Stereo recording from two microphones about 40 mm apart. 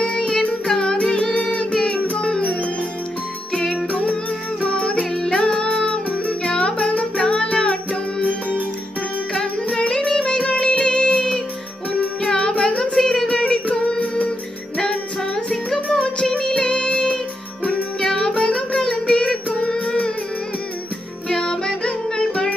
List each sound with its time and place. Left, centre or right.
0.0 s music: left
2.4 s music: left
3.5 s jingle: centre
3.9 s music: left
9.7 s music: left
12.9 s a sound: centre
13.9 s music: left
15.3 s music: centre
16.0 s music: left
18.8 s child singing: left
21.3 s music: centre